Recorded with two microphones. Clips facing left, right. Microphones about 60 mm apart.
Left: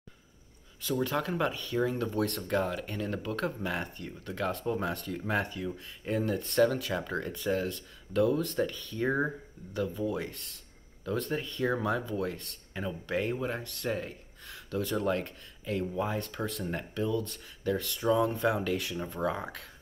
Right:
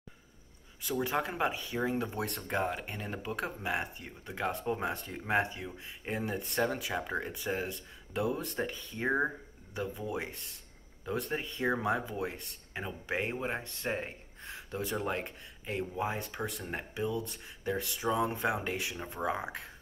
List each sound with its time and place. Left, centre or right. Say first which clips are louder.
0.7 s speech: left 2 dB; centre